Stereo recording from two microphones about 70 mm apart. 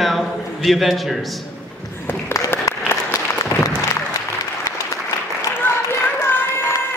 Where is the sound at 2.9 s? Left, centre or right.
Left.